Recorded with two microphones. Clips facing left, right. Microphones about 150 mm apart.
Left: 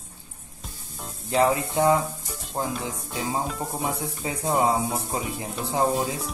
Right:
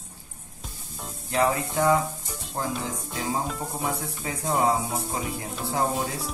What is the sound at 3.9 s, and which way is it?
Speech, 20° left (ahead or behind).